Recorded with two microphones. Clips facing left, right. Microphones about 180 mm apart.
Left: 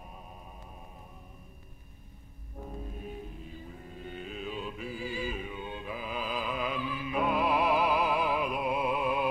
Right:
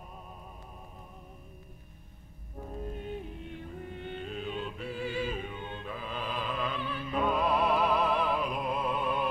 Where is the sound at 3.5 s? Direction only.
80° right.